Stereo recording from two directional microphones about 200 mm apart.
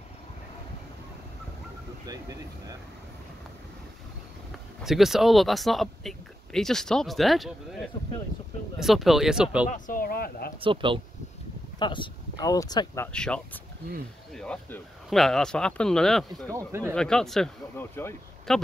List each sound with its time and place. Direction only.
4.8 s speech: centre (ahead or behind)
7.9 s speech: 20° left (ahead or behind)
8.7 s speech: centre (ahead or behind)
9.7 s speech: 45° left (ahead or behind)
10.6 s speech: 25° right (ahead or behind)
11.8 s speech: 25° left (ahead or behind); by 16.4 s centre (ahead or behind)
16.4 s speech: 15° right (ahead or behind)
16.9 s speech: 5° left (ahead or behind)